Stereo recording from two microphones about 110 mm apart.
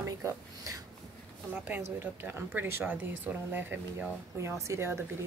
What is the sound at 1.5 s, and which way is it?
A woman's voice, 15° right (ahead or behind).